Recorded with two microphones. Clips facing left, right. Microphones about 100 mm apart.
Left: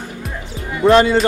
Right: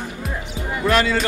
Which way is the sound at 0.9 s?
25° left (ahead or behind).